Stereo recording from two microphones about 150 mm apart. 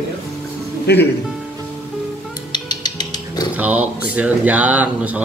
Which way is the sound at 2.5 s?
30° left (ahead or behind).